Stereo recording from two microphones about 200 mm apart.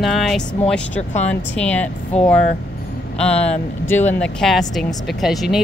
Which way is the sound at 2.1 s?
35° left (ahead or behind).